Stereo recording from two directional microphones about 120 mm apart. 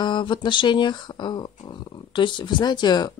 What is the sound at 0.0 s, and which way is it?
Speech, 40° left (ahead or behind).